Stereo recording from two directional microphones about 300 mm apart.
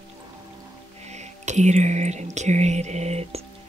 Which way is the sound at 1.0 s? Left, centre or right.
Right.